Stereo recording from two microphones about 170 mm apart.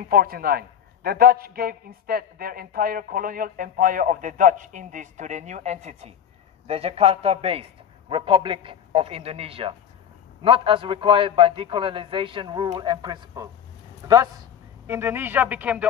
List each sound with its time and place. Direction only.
0.1 s a man's voice: 60° right (ahead or behind); by 15.9 s 10° right (ahead or behind)